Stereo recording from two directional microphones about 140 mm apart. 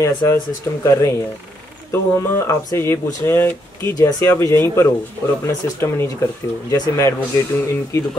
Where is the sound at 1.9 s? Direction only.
20° left (ahead or behind).